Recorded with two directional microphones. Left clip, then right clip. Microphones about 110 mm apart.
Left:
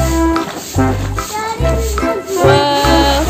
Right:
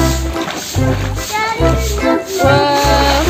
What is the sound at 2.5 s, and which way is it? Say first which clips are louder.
Music: even; 15° left (ahead or behind).